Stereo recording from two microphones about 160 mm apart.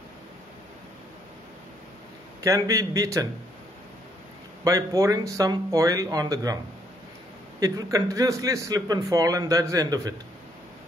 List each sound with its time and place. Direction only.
2.4 s a man's voice: 20° right (ahead or behind)
4.6 s a man's voice: 20° right (ahead or behind)
7.6 s a man's voice: 20° right (ahead or behind)